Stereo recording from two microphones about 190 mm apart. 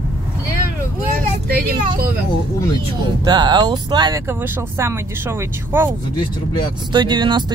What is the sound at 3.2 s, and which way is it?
Speech, 20° right (ahead or behind).